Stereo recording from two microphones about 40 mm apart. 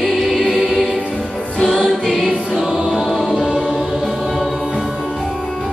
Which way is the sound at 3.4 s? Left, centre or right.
Centre.